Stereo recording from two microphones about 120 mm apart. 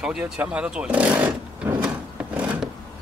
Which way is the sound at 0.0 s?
10° right (ahead or behind).